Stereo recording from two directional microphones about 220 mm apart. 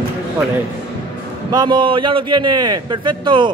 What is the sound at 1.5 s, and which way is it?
A man's voice, 20° right (ahead or behind).